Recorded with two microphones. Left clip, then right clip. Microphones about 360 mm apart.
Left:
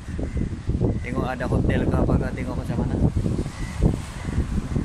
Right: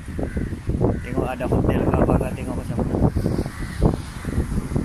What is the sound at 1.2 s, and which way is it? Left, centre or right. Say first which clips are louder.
Speech: right 2 dB; centre.